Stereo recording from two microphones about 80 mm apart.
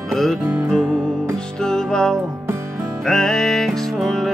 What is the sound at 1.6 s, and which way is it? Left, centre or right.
Music, centre.